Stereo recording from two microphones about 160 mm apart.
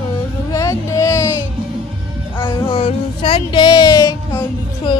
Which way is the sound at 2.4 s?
30° left (ahead or behind).